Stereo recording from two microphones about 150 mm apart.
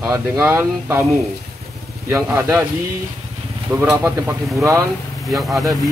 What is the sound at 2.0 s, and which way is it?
Speech, 15° right (ahead or behind).